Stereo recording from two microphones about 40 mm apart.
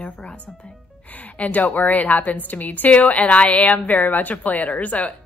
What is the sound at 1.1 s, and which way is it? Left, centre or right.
A woman's voice, left.